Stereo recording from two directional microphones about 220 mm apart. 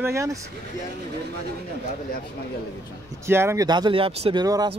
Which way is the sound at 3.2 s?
10° right (ahead or behind).